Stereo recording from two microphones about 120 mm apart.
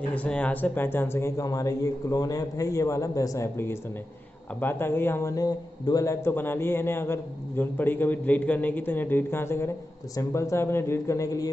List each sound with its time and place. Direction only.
0.1 s a man's voice: 10° left (ahead or behind); by 11.5 s 30° left (ahead or behind)